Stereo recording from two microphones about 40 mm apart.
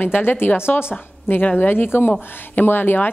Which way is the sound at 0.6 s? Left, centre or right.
Left.